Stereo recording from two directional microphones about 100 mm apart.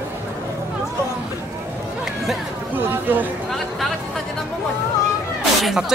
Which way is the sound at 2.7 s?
20° right (ahead or behind).